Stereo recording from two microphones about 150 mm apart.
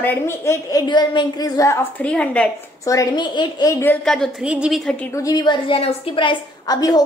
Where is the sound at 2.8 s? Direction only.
25° left (ahead or behind).